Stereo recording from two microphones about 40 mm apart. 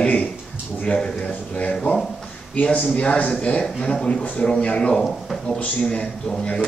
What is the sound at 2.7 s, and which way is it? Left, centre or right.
Speech, left.